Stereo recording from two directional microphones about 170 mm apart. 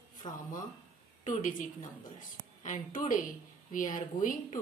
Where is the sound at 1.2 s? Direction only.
50° left (ahead or behind).